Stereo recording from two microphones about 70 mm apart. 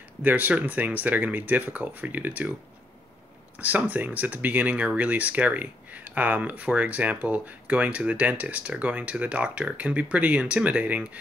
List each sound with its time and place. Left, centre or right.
0.2 s speech: right
3.6 s speech: right